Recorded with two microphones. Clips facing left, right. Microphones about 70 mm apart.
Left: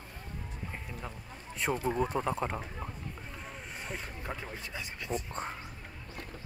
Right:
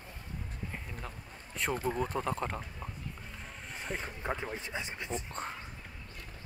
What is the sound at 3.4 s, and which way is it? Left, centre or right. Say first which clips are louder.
Vehicle: right 2 dB; centre.